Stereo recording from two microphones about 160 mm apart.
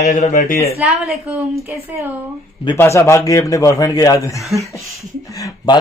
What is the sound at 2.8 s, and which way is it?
A man's voice, 15° left (ahead or behind).